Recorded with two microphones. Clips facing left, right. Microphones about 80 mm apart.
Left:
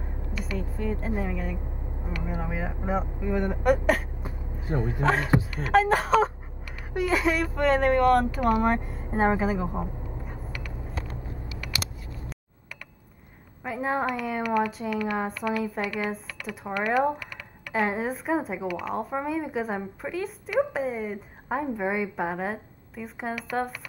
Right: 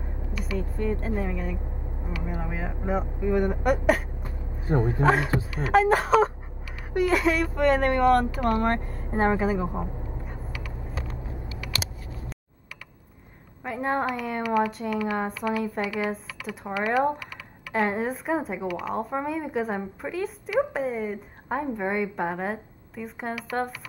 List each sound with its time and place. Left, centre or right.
0.0 s speech: centre
4.6 s a man's voice: right
5.0 s speech: centre
8.5 s vehicle: centre
13.7 s speech: centre